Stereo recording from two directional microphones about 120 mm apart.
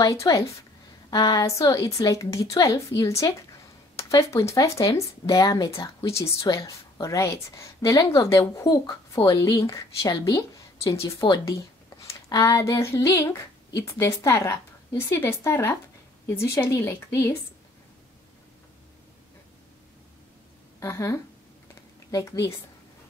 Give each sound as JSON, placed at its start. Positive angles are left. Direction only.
{"t": 0.0, "sound": "a woman's voice", "side_deg": 25}
{"t": 20.8, "sound": "speech", "side_deg": 25}